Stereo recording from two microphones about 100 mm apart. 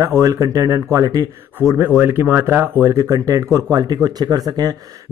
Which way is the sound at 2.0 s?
25° right (ahead or behind).